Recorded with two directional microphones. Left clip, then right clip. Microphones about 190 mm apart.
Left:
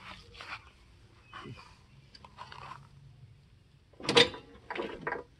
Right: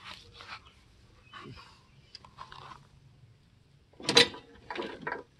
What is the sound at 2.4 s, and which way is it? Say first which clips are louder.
Biting: left 1 dB; 40° left (ahead or behind).